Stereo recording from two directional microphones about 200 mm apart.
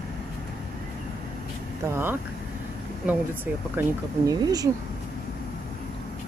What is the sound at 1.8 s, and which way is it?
Speech, 10° right (ahead or behind).